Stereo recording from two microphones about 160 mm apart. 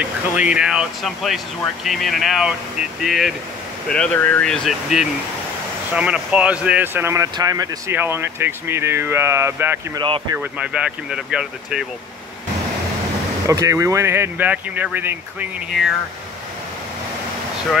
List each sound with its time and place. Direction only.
0.0 s speech: 5° right (ahead or behind)
3.9 s speech: 10° left (ahead or behind); by 7.7 s 25° right (ahead or behind)
7.9 s speech: 15° right (ahead or behind)
9.9 s speech: 30° right (ahead or behind)
10.3 s speech: 10° right (ahead or behind)
13.5 s speech: 20° right (ahead or behind)